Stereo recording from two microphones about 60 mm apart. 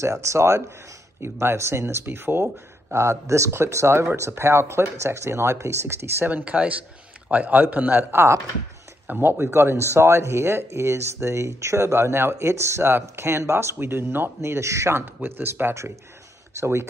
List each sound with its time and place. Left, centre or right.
0.0 s speech: right
6.3 s speech: right
8.1 s speech: right
9.0 s speech: right
15.2 s speech: right
16.5 s speech: right